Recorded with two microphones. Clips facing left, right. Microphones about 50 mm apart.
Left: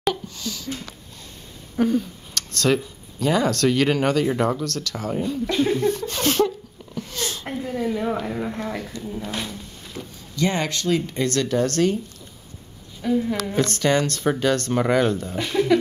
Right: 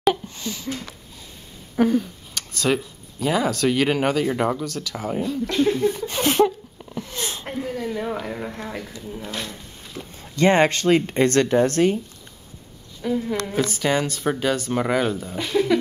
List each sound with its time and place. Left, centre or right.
0.1 s a sound: right
1.8 s speech: centre
5.2 s a woman's voice: centre
5.9 s a sound: centre
7.8 s a woman's voice: centre
10.3 s speech: right
13.0 s a woman's voice: centre